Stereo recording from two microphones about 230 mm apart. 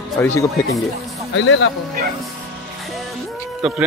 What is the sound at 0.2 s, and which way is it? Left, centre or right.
Speech, centre.